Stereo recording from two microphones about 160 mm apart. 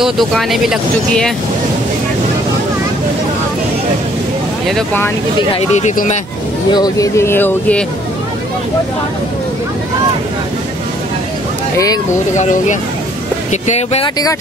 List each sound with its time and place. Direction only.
0.0 s speech: centre (ahead or behind)
5.5 s speech: 45° left (ahead or behind)
6.7 s speech: 25° left (ahead or behind)
13.5 s speech: 45° left (ahead or behind)